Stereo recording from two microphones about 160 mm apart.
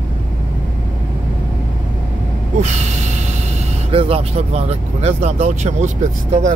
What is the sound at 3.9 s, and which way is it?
Speech, 35° right (ahead or behind).